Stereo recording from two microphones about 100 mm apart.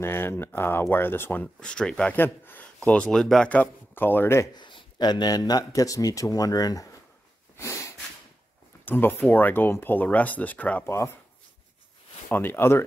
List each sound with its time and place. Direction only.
0.0 s speech: 25° left (ahead or behind)
1.6 s speech: 10° left (ahead or behind)
2.1 s speech: 20° left (ahead or behind)
4.6 s speech: 50° left (ahead or behind)
7.5 s snort: 30° left (ahead or behind)
8.8 s speech: 20° left (ahead or behind)
10.9 s speech: 30° left (ahead or behind)
12.3 s speech: 20° left (ahead or behind)